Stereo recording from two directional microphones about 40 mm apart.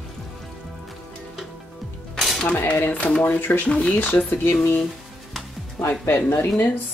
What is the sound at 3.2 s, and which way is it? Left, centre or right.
Speech, left.